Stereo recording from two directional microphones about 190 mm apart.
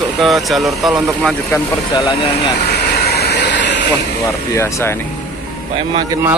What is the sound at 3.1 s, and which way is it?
Vehicle, 60° left (ahead or behind).